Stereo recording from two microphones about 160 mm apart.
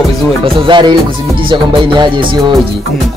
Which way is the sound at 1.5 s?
30° right (ahead or behind).